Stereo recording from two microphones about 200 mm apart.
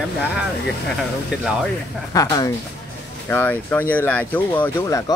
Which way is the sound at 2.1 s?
15° left (ahead or behind).